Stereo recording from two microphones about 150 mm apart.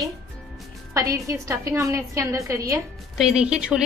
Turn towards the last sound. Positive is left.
turn(degrees=-5)  # may be behind; listen again after turning